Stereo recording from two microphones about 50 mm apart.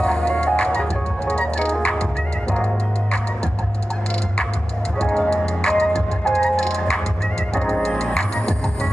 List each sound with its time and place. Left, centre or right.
0.0 s music: centre
4.9 s music: centre